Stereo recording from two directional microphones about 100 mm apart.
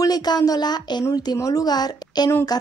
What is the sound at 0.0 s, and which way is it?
A woman's voice, 40° left (ahead or behind).